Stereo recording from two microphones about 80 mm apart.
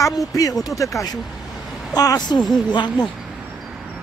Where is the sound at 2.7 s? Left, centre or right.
Left.